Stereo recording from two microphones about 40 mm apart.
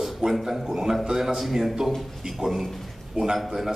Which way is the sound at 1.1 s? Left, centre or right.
Centre.